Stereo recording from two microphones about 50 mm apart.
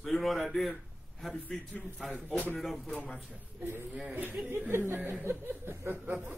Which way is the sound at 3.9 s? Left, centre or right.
Right.